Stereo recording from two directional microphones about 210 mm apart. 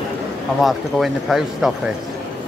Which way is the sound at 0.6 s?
Centre (ahead or behind).